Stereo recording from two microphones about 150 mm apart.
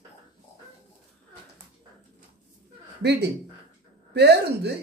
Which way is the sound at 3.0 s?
90° right.